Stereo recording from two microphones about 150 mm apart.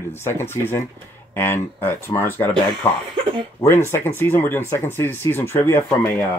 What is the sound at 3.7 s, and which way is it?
Speech, 15° left (ahead or behind).